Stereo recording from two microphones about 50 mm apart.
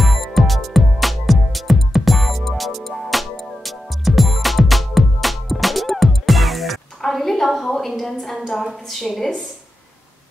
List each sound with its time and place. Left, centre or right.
0.0 s music: centre
9.0 s a woman's voice: centre